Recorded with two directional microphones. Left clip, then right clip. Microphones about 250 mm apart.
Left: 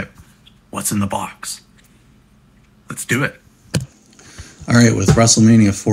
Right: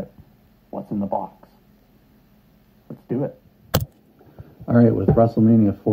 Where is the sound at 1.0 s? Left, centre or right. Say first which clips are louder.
Left 2 dB; right.